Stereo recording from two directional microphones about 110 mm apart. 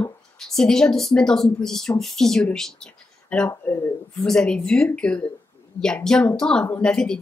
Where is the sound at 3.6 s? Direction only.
15° left (ahead or behind).